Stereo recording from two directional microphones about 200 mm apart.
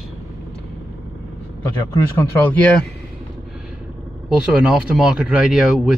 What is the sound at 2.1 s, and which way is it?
Speech, 10° left (ahead or behind).